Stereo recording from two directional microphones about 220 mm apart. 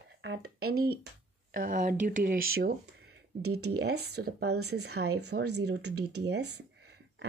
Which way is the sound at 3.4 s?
90° right.